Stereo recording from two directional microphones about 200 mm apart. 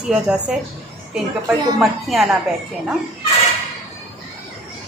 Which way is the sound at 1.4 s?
15° right (ahead or behind).